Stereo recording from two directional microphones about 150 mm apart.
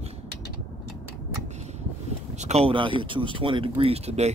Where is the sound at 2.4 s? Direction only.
45° right (ahead or behind).